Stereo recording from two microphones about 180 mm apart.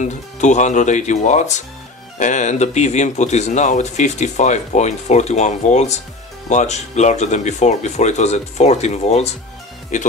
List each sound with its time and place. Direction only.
0.0 s speech: 40° left (ahead or behind)